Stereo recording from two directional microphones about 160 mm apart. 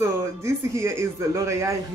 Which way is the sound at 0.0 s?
15° right (ahead or behind).